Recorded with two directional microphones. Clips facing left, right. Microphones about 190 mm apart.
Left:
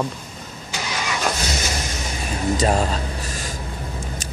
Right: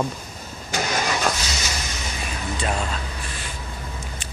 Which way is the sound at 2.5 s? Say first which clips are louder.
Left 6 dB; 40° left (ahead or behind).